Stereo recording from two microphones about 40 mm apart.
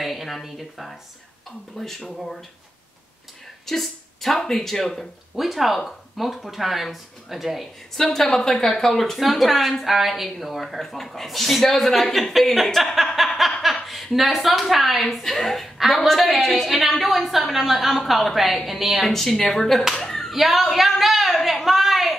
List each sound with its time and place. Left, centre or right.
0.0 s a woman's voice: centre
3.6 s speech: centre
5.3 s a woman's voice: centre
9.2 s a woman's voice: centre
20.0 s a sound: centre